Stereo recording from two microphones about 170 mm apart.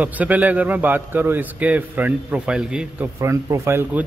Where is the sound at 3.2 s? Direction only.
15° right (ahead or behind).